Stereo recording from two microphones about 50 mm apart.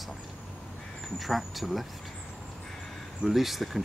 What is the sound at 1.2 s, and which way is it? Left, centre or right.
Speech, centre.